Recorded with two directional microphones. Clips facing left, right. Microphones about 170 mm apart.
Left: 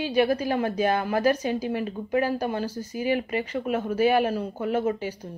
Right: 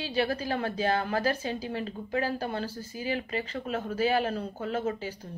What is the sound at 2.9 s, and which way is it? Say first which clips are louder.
Speech: left 7 dB; 15° left (ahead or behind).